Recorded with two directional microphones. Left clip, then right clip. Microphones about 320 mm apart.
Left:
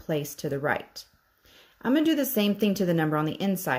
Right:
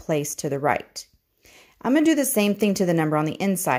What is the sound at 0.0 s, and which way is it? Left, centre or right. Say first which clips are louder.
Speech: right 5 dB; centre.